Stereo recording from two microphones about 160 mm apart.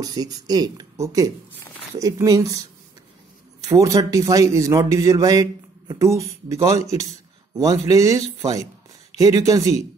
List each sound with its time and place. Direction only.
0.0 s a man's voice: 25° right (ahead or behind)
3.6 s a man's voice: 20° right (ahead or behind)